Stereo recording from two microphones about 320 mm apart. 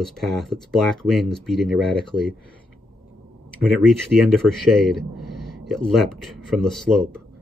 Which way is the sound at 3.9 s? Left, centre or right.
Centre.